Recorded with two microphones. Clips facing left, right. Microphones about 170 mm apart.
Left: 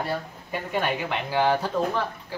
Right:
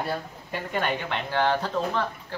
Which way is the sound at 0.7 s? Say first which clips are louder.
Left 1 dB; 5° left (ahead or behind).